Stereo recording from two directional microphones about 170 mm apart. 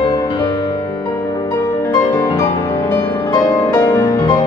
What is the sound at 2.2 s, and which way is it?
Music, 15° left (ahead or behind).